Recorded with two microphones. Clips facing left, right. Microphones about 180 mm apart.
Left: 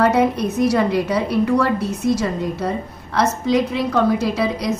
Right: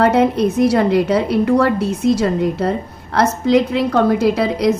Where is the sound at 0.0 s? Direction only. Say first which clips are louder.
Right 3 dB; 55° right (ahead or behind).